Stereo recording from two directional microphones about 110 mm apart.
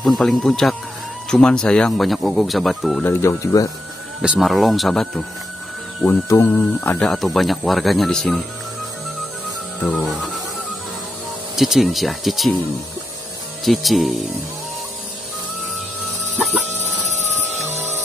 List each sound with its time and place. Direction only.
0.0 s speech: centre (ahead or behind)
3.0 s speech: 20° left (ahead or behind)
4.2 s speech: 5° right (ahead or behind)
6.2 s speech: 25° left (ahead or behind)
7.0 s speech: 5° left (ahead or behind)
11.5 s speech: centre (ahead or behind)
13.7 s speech: centre (ahead or behind)
17.6 s music: 25° right (ahead or behind)